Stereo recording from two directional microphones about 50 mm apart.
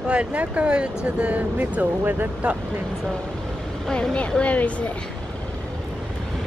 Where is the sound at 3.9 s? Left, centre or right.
Centre.